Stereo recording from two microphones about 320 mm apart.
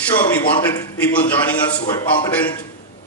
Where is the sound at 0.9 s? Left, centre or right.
Centre.